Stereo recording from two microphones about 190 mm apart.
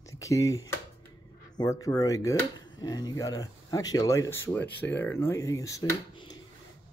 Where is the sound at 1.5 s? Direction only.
20° left (ahead or behind).